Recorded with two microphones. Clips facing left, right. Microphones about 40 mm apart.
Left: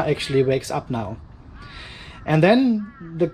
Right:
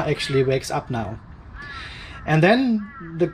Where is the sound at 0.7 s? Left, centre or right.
Centre.